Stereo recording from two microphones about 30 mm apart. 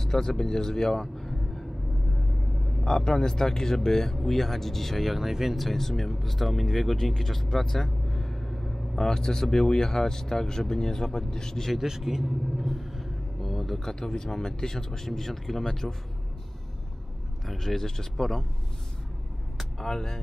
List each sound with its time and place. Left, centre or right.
0.0 s speech: centre
2.8 s speech: left; by 5.2 s centre
5.2 s speech: centre
5.6 s speech: centre
11.8 s speech: centre
12.5 s vehicle: centre
13.7 s speech: left
17.5 s speech: centre
19.8 s speech: centre